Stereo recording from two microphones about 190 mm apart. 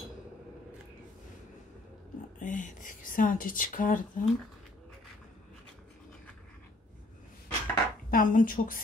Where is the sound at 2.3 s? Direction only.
45° left (ahead or behind).